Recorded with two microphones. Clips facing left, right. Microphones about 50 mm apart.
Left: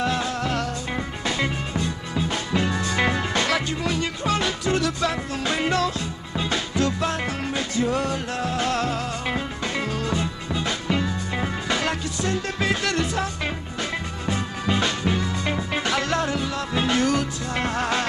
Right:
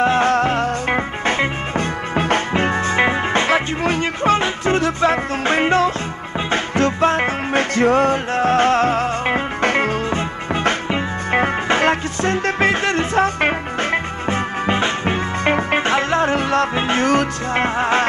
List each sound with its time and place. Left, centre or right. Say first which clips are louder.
0.2 s music: right 9 dB; right
2.5 s music: right 6 dB; right
16.3 s music: right 9 dB; right
16.7 s music: right 5 dB; right
17.6 s music: right 6 dB; right